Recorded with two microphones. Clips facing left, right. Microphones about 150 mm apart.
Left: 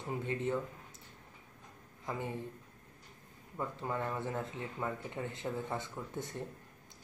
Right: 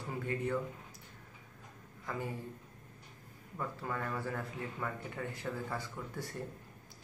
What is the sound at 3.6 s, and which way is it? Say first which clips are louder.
Speech: left 2 dB; 20° left (ahead or behind).